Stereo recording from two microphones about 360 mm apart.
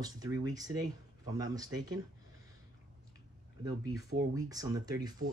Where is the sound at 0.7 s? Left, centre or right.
Right.